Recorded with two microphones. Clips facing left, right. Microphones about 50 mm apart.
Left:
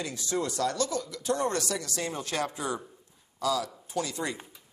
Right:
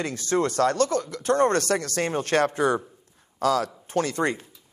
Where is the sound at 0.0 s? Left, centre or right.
Right.